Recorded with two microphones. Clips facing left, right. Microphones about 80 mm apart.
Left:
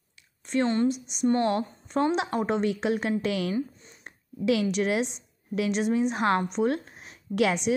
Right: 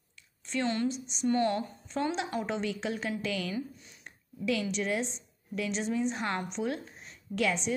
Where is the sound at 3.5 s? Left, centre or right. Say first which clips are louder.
Left 6 dB; left.